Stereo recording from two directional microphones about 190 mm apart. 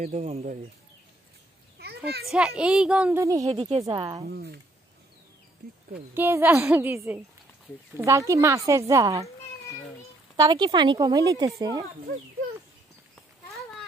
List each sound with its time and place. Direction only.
0.0 s speech: 35° right (ahead or behind)
2.2 s a woman's voice: 5° right (ahead or behind)
3.5 s speech: 30° right (ahead or behind)
3.8 s speech: 20° right (ahead or behind)
4.3 s speech: 55° right (ahead or behind)
6.1 s speech: 10° right (ahead or behind)
10.3 s speech: 20° right (ahead or behind)